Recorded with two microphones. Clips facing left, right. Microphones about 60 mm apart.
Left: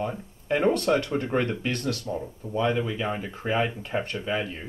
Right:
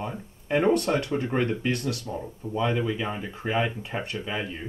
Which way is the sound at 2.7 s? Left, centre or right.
Centre.